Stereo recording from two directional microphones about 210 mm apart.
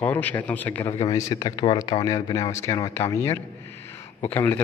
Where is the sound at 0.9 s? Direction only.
20° left (ahead or behind).